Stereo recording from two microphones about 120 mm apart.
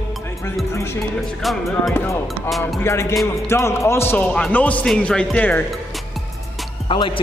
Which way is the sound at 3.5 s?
25° left (ahead or behind).